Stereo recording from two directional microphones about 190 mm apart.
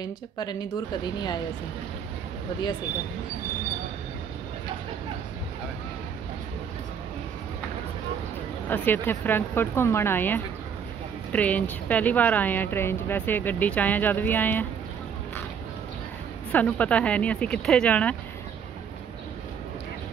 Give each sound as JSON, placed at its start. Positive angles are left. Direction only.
{"t": 0.0, "sound": "speech", "side_deg": 20}
{"t": 8.6, "sound": "speech", "side_deg": 10}
{"t": 16.5, "sound": "speech", "side_deg": 5}